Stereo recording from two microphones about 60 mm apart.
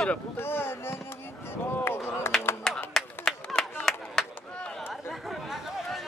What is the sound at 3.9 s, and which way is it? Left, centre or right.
Chop, centre.